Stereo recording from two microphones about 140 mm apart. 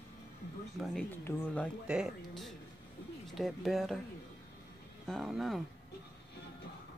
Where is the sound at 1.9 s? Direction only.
Centre (ahead or behind).